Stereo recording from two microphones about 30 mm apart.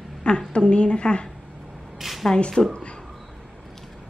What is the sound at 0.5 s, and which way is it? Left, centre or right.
Speech, left.